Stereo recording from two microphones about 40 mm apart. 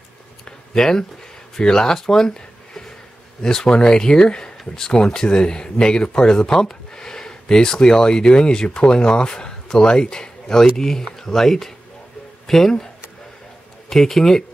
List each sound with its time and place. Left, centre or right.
0.5 s a sound: centre
1.6 s speech: centre
13.8 s speech: centre